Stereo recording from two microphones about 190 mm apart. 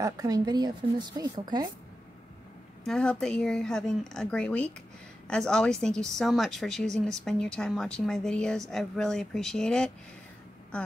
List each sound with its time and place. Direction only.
0.0 s a woman's voice: 20° right (ahead or behind)
2.8 s a woman's voice: 5° left (ahead or behind)